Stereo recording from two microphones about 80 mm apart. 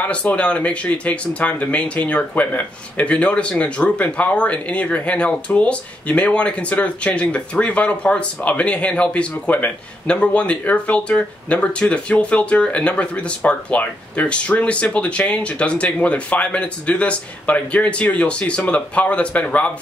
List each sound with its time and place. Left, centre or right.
0.0 s speech: centre